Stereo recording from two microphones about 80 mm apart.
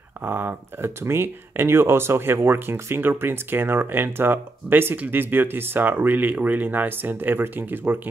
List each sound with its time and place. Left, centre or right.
0.2 s speech: right